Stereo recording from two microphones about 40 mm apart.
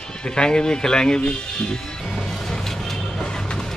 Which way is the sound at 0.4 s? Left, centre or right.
Left.